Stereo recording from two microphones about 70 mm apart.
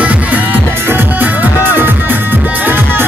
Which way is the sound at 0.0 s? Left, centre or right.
Right.